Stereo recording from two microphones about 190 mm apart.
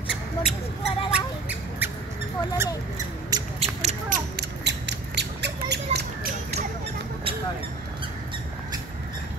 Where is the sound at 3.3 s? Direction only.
20° right (ahead or behind).